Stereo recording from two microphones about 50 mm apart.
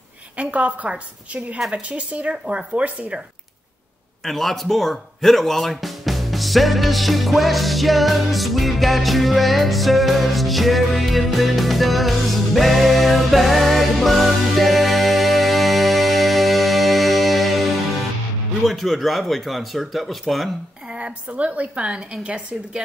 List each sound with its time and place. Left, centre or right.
0.4 s a woman's voice: right
4.2 s speech: centre
18.7 s speech: centre
20.9 s a woman's voice: right